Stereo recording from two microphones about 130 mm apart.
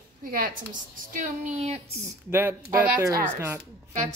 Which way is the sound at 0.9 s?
80° right.